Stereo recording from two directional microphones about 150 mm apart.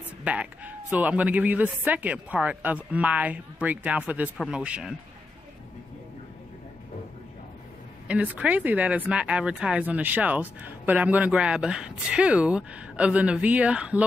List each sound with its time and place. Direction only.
0.2 s speech: 10° right (ahead or behind)
8.1 s speech: 10° right (ahead or behind)